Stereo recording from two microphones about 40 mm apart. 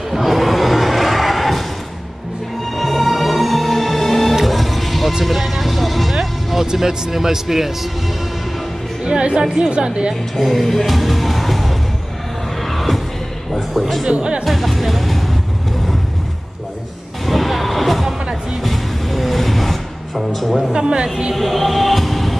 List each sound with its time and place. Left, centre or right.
0.1 s a sound: centre
2.8 s music: centre
9.0 s music: right
9.7 s speech: right
10.3 s music: centre
13.5 s a sound: centre
14.1 s speech: right
14.4 s music: centre
17.3 s music: centre
20.7 s speech: right
21.4 s music: centre